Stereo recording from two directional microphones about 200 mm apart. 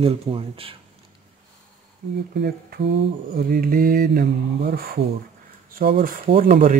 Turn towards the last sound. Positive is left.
turn(degrees=-45)  # may be behind; listen again after turning